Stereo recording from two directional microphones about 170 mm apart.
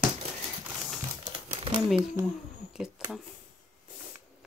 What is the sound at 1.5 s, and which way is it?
Crumpling, 30° right (ahead or behind).